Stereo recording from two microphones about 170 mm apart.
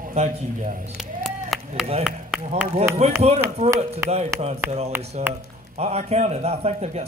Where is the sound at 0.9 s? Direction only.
Centre (ahead or behind).